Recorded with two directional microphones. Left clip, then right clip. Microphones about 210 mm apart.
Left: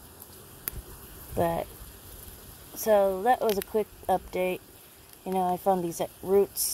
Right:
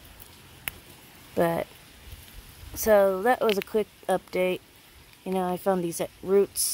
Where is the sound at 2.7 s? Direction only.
20° right (ahead or behind).